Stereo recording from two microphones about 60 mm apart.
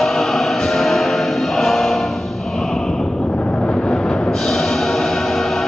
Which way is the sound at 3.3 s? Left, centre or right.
Centre.